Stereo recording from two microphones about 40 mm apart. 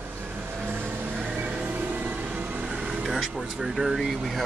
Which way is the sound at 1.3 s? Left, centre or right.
Right.